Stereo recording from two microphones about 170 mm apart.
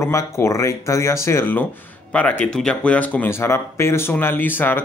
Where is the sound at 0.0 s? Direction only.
15° left (ahead or behind).